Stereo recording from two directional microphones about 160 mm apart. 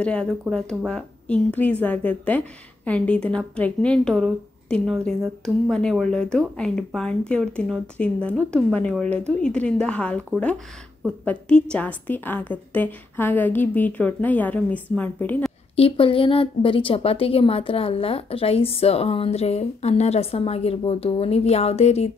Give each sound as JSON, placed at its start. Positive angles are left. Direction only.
{"t": 0.0, "sound": "a woman's voice", "side_deg": 5}
{"t": 15.7, "sound": "a woman's voice", "side_deg": 35}